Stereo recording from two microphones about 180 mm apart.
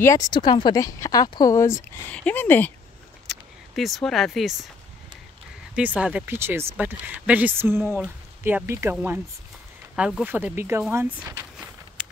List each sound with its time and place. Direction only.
0.0 s speech: 20° left (ahead or behind)
2.0 s speech: 10° left (ahead or behind)
3.3 s a sound: centre (ahead or behind)
5.8 s speech: 5° right (ahead or behind)
9.9 s speech: 5° right (ahead or behind)
12.0 s a sound: 5° right (ahead or behind)